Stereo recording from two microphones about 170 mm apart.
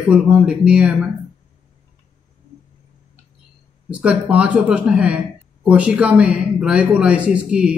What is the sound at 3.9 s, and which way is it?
Speech, 5° right (ahead or behind).